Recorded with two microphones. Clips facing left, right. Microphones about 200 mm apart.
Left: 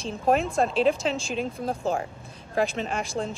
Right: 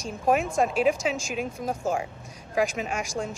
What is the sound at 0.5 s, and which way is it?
Speech, 10° right (ahead or behind).